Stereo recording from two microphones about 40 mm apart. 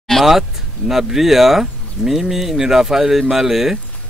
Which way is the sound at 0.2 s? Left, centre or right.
Centre.